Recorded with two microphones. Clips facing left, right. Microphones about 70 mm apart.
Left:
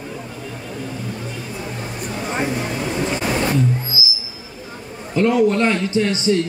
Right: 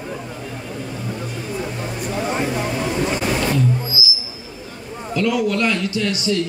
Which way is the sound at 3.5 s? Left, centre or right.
Left.